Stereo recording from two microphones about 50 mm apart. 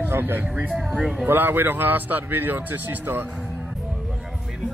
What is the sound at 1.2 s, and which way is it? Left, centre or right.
Speech, right.